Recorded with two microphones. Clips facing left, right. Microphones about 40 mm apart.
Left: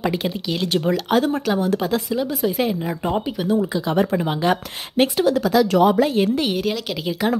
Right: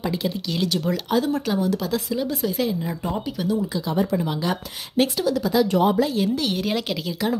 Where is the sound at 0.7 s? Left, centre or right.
Left.